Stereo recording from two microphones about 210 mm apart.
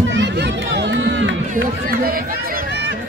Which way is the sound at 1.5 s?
45° right (ahead or behind).